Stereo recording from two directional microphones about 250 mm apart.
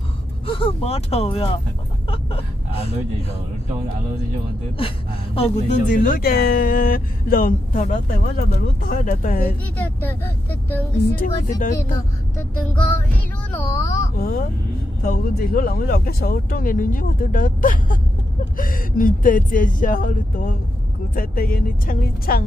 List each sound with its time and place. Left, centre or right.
0.5 s speech: left
2.0 s vehicle: left
4.7 s speech: left
9.9 s speech: centre
11.1 s speech: left
12.9 s music: centre
14.1 s speech: left